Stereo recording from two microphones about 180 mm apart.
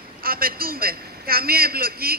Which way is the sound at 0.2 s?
55° right (ahead or behind).